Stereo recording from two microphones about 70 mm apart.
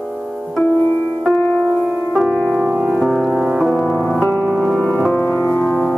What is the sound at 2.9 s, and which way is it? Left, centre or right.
Music, centre.